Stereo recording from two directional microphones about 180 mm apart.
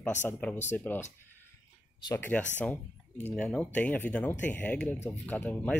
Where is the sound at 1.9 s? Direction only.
20° left (ahead or behind).